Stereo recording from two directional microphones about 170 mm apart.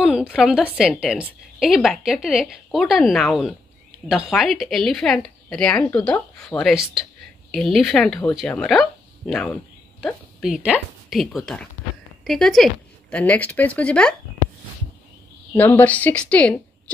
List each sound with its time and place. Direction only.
0.0 s a woman's voice: 5° right (ahead or behind)
15.5 s speech: 10° left (ahead or behind)